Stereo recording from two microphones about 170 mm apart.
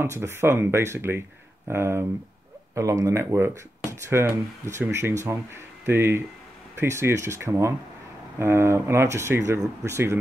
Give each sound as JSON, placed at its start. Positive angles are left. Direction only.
{"t": 0.0, "sound": "speech", "side_deg": -15}